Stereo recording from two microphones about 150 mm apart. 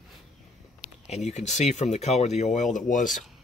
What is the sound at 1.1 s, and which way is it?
Speech, 50° left (ahead or behind).